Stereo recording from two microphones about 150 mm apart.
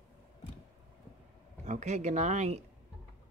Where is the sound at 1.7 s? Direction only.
50° right (ahead or behind).